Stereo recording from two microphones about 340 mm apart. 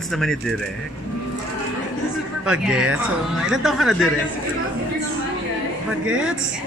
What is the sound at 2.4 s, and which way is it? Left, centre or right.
A man's voice, centre.